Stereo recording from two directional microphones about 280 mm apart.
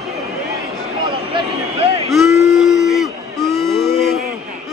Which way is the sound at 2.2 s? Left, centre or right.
Centre.